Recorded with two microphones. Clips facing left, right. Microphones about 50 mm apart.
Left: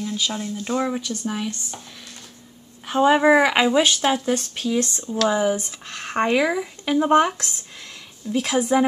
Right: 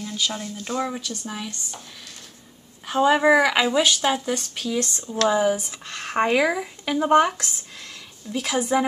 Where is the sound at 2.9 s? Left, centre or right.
Centre.